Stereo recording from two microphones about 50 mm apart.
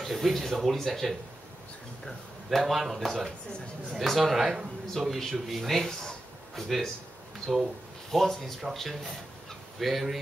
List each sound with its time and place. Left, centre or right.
0.0 s speech: centre
3.3 s speech: centre
3.9 s speech: centre